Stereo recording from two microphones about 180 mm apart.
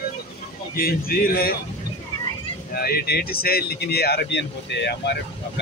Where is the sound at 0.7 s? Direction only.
55° left (ahead or behind).